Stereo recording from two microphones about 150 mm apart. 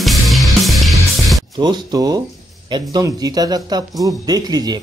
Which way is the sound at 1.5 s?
30° right (ahead or behind).